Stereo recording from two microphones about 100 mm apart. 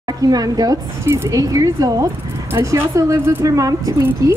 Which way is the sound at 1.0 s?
25° right (ahead or behind).